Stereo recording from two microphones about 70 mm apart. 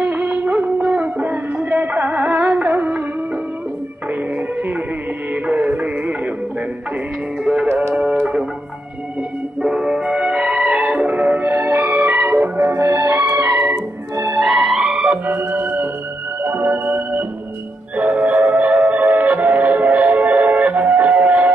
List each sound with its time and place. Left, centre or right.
0.0 s music: right
4.1 s music: right
7.6 s music: right
7.9 s music: centre
9.6 s music: centre; by 13.1 s right
13.4 s music: right
14.3 s music: centre
15.2 s organ: right
16.4 s music: right